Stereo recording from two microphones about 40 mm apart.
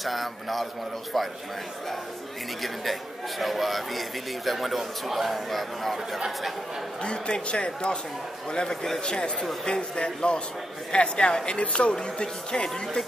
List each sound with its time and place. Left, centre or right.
0.0 s a man's voice: centre
2.6 s a man's voice: centre
7.0 s speech: left
11.9 s speech: centre